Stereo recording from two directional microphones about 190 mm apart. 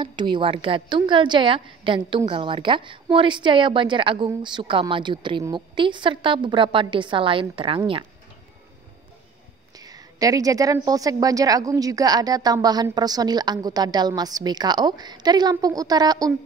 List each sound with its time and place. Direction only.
0.0 s a woman's voice: 25° right (ahead or behind)
9.8 s a woman's voice: 20° right (ahead or behind)